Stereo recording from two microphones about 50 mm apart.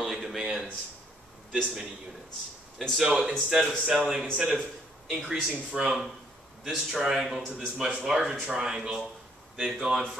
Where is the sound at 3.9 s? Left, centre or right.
Centre.